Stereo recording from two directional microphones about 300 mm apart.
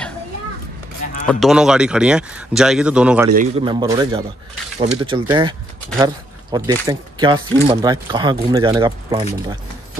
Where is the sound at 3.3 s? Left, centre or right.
Right.